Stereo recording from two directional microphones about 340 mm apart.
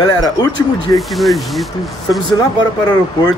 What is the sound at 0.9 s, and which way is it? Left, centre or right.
Speech, centre.